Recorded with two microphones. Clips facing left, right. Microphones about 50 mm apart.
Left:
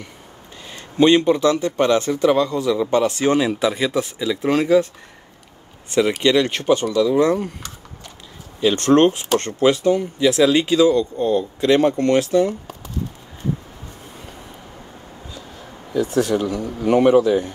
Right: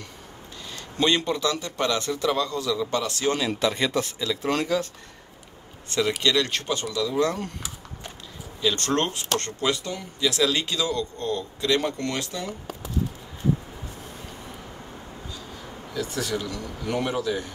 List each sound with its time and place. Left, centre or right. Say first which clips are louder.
0.7 s a man's voice: left 9 dB; centre
5.9 s a man's voice: left 7 dB; centre
8.5 s a man's voice: left 10 dB; left
11.6 s a man's voice: left 8 dB; left
12.4 s a sound: left 7 dB; centre
15.9 s a man's voice: left 10 dB; left